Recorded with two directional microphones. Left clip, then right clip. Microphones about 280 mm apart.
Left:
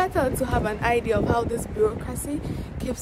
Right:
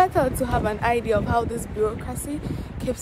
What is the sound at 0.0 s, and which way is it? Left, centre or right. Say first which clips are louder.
Speech: right 3 dB; centre.